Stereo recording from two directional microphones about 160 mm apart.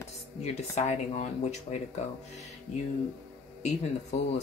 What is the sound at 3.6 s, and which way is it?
Speech, 45° left (ahead or behind).